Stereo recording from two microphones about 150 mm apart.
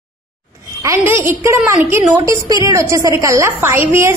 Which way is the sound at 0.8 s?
20° right (ahead or behind).